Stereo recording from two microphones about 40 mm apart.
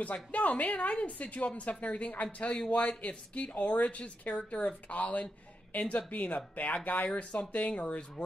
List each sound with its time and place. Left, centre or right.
0.0 s speech: left